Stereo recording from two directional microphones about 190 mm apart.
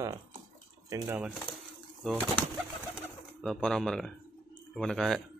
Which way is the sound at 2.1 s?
5° left (ahead or behind).